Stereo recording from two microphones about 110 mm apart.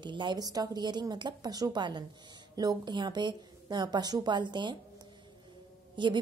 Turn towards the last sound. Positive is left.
turn(degrees=-45)  # may be behind; listen again after turning